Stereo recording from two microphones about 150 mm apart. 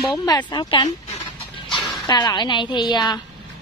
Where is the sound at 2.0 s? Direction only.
25° left (ahead or behind).